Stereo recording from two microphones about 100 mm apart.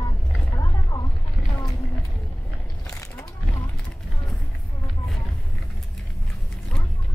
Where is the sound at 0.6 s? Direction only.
40° left (ahead or behind).